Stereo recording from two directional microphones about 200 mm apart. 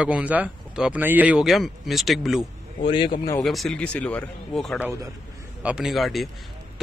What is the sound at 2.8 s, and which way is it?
Speech, 25° left (ahead or behind).